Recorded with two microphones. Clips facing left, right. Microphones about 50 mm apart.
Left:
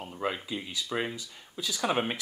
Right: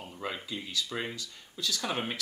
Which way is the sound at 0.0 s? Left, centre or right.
Centre.